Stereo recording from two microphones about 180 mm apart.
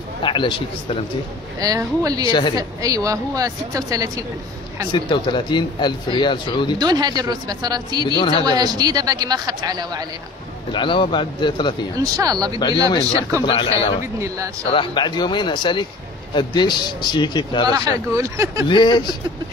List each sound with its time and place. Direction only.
0.2 s speech: 25° left (ahead or behind)
1.6 s a woman's voice: 20° right (ahead or behind)
2.2 s speech: 25° left (ahead or behind)
2.5 s a woman's voice: 20° right (ahead or behind)
4.9 s speech: 25° left (ahead or behind)
6.8 s a woman's voice: 20° right (ahead or behind)
8.2 s speech: 30° left (ahead or behind)
8.5 s a woman's voice: 20° right (ahead or behind)
10.7 s speech: 25° left (ahead or behind)
12.0 s a woman's voice: 20° right (ahead or behind)
12.5 s speech: 30° left (ahead or behind)
17.6 s speech: 20° right (ahead or behind)
18.7 s speech: 25° left (ahead or behind)